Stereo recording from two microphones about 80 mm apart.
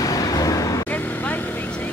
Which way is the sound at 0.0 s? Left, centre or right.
Left.